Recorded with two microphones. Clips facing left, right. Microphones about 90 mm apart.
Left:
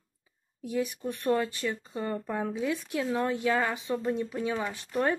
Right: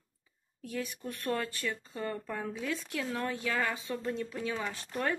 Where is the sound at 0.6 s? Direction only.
15° left (ahead or behind).